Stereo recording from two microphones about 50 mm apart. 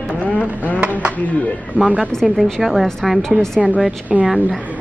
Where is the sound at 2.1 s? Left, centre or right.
Centre.